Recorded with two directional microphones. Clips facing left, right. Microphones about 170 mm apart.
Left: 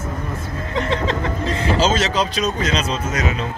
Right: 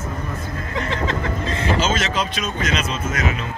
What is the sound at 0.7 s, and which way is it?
Speech, 30° left (ahead or behind).